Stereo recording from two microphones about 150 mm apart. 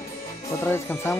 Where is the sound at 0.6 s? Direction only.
15° left (ahead or behind).